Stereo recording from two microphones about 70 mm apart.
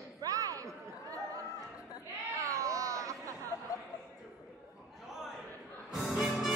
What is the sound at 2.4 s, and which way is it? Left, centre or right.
Baby cry, right.